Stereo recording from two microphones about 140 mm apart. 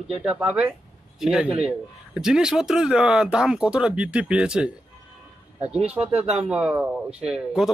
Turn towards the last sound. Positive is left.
turn(degrees=-5)  # may be behind; listen again after turning